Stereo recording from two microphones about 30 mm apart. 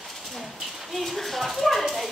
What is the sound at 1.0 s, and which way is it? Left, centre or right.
Clip-clop, centre.